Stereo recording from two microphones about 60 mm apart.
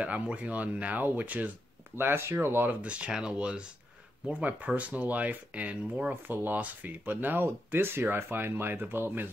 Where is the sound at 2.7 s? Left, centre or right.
Right.